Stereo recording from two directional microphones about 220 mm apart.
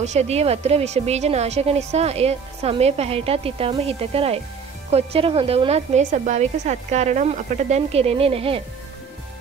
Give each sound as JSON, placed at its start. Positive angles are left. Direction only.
{"t": 0.0, "sound": "a woman's voice", "side_deg": -30}